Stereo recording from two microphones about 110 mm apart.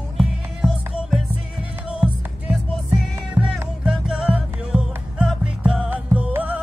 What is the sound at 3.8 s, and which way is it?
Music, 5° right (ahead or behind).